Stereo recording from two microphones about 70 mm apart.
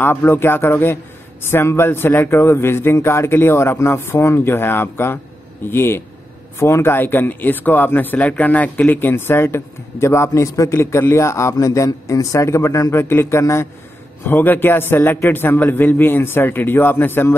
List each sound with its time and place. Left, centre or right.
0.0 s a man's voice: left
13.1 s a man's voice: left
14.2 s a man's voice: left